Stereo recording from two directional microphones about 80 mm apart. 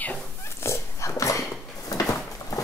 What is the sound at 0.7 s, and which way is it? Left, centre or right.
Dog, left.